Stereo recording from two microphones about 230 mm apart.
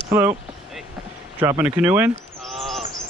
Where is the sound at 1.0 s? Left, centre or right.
Centre.